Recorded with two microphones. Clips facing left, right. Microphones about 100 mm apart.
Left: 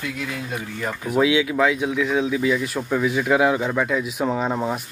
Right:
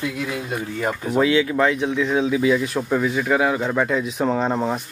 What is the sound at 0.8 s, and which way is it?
Speech, 25° right (ahead or behind).